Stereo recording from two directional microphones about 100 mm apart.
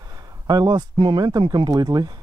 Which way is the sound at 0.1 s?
40° right (ahead or behind).